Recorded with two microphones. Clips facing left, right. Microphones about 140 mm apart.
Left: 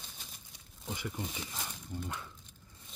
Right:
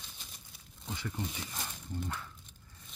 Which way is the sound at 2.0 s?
15° left (ahead or behind).